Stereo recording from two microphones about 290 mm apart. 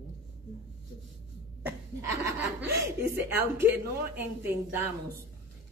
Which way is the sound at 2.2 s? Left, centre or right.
Centre.